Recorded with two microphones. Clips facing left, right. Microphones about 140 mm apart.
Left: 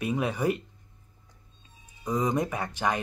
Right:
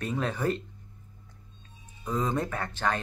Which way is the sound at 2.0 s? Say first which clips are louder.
Left 2 dB; 15° left (ahead or behind).